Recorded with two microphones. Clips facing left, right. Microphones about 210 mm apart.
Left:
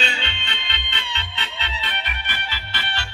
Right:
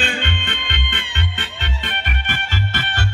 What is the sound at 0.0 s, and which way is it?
Music, 50° right (ahead or behind).